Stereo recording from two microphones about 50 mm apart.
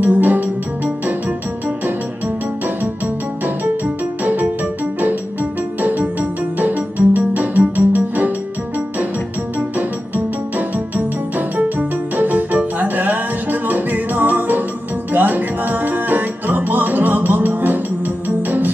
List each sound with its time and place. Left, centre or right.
0.0 s music: right
3.4 s music: right
5.8 s music: right
9.6 s music: right